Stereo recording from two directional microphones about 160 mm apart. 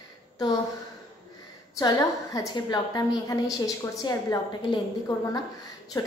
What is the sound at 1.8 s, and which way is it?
A woman's voice, 25° left (ahead or behind).